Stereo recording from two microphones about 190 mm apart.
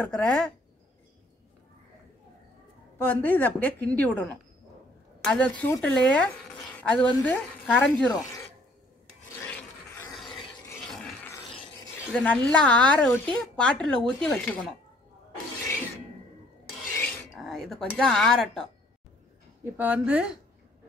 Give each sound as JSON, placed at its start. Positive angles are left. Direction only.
{"t": 0.0, "sound": "speech", "side_deg": 5}
{"t": 3.0, "sound": "a woman's voice", "side_deg": 10}
{"t": 8.1, "sound": "speech", "side_deg": 20}
{"t": 9.4, "sound": "filing", "side_deg": 10}
{"t": 12.1, "sound": "speech", "side_deg": 5}
{"t": 17.3, "sound": "speech", "side_deg": 0}
{"t": 19.6, "sound": "speech", "side_deg": -10}